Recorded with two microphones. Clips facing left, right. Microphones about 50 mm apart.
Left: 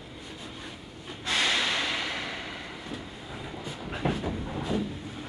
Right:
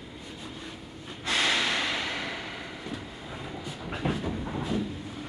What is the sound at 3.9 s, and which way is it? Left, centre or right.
Train, centre.